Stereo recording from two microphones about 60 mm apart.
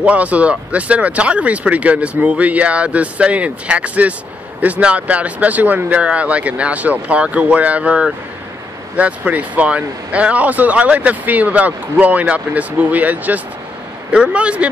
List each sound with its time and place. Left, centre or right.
0.0 s speech: right